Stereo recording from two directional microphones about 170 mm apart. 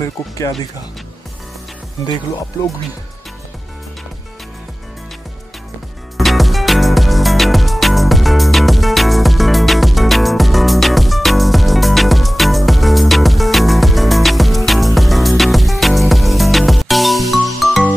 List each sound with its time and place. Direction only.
2.0 s speech: 25° left (ahead or behind)
6.1 s music: centre (ahead or behind)